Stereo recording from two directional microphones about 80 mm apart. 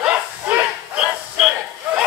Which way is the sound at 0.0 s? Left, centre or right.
Right.